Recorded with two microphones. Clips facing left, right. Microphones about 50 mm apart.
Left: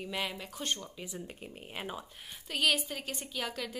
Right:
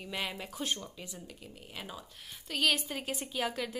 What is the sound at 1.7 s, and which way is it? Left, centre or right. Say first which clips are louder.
Speech: left 4 dB; left.